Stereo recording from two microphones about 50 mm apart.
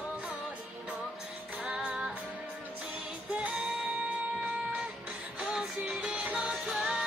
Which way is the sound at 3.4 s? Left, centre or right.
Right.